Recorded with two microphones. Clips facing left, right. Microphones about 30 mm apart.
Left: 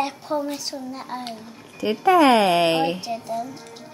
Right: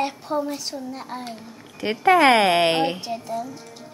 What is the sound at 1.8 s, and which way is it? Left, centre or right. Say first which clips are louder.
Speech: even; right.